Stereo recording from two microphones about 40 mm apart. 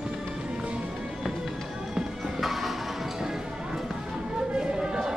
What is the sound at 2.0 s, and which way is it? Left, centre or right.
Music, centre.